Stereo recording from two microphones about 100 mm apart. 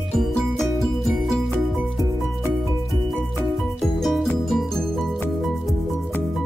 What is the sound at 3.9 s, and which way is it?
Music, 5° left (ahead or behind).